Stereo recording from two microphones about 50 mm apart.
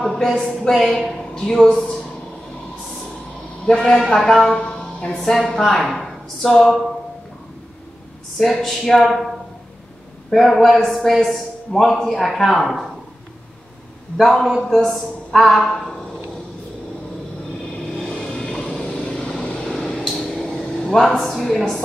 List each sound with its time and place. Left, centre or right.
0.0 s a sound: centre
0.5 s a woman's voice: centre
3.6 s a woman's voice: centre
8.4 s a man's voice: centre
10.3 s a man's voice: centre
14.1 s a man's voice: centre
18.3 s vehicle: centre
19.4 s vehicle: left
19.7 s a sound: centre